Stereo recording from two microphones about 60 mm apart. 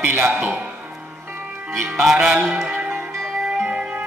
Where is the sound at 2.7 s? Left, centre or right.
Right.